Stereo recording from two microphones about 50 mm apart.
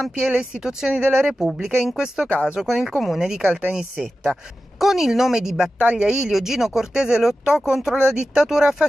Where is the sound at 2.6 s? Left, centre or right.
Centre.